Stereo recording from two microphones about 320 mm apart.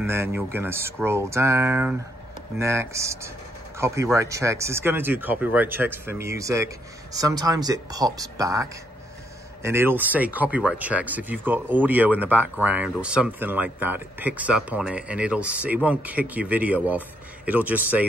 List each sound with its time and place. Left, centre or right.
0.0 s speech: centre